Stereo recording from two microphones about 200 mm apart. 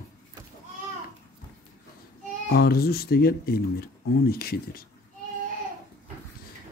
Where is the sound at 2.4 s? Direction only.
50° left (ahead or behind).